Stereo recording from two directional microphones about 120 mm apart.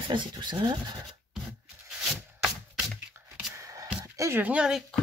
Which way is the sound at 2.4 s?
10° right (ahead or behind).